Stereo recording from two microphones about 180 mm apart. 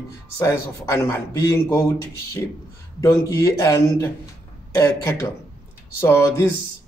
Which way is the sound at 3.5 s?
15° left (ahead or behind).